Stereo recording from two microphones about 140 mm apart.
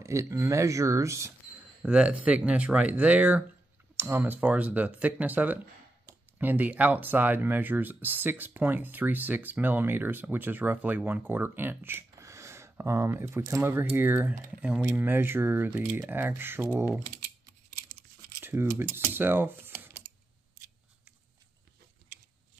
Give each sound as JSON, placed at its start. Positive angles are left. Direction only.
{"t": 0.0, "sound": "speech", "side_deg": -20}
{"t": 1.8, "sound": "speech", "side_deg": -5}
{"t": 18.4, "sound": "a sound", "side_deg": -15}
{"t": 18.8, "sound": "speech", "side_deg": -15}